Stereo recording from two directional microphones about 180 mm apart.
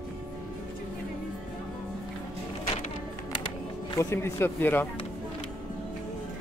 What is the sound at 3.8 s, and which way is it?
Speech, 15° left (ahead or behind).